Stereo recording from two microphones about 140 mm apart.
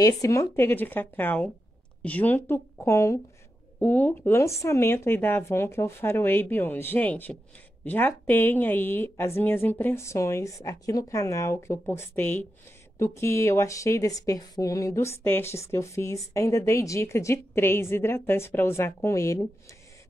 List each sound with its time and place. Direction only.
0.0 s speech: 25° left (ahead or behind)